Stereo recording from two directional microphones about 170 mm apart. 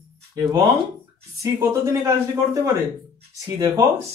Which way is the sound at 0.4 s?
25° right (ahead or behind).